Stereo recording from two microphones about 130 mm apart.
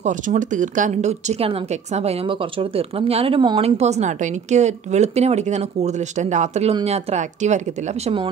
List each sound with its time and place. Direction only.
0.0 s speech: 75° right (ahead or behind)
6.7 s speech: 50° right (ahead or behind)